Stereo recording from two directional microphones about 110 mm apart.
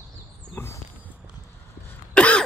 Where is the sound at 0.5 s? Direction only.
25° left (ahead or behind).